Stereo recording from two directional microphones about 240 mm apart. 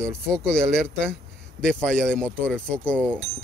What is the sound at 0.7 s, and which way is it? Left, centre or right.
Speech, centre.